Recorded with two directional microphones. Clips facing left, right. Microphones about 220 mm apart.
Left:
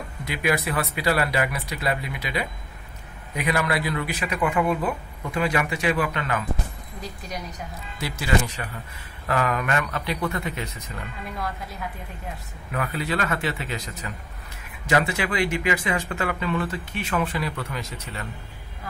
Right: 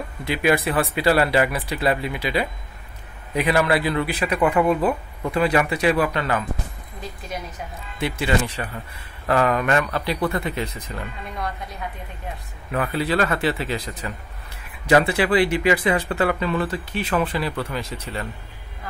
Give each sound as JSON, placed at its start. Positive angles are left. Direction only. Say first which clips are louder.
{"t": 0.2, "sound": "speech", "louder": "right 5 dB", "side_deg": -30}
{"t": 8.0, "sound": "speech", "louder": "right 3 dB", "side_deg": -30}
{"t": 11.3, "sound": "a woman's voice", "louder": "right 2 dB", "side_deg": 0}
{"t": 12.7, "sound": "speech", "louder": "right 5 dB", "side_deg": -35}